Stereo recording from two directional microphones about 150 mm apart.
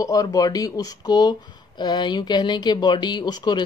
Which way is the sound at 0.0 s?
25° left (ahead or behind).